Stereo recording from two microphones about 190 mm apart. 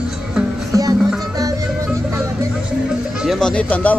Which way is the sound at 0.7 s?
20° right (ahead or behind).